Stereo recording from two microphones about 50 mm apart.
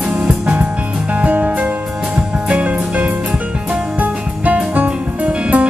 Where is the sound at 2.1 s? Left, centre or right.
Centre.